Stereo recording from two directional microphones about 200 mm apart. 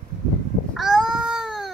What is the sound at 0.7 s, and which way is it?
Baby cry, centre (ahead or behind).